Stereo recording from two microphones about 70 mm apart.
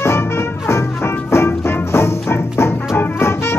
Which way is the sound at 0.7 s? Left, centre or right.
Left.